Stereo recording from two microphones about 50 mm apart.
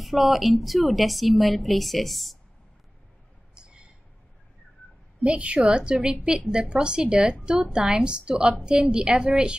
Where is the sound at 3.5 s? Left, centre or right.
Centre.